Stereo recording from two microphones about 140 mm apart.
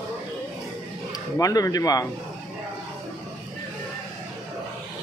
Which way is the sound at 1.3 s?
25° left (ahead or behind).